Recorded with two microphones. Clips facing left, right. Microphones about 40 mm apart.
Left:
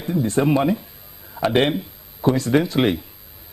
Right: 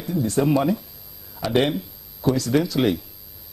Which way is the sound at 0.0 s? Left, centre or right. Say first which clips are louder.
Left 2 dB; left.